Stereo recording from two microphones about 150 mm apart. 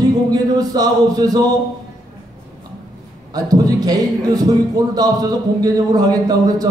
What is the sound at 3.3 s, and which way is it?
A man's voice, 25° right (ahead or behind).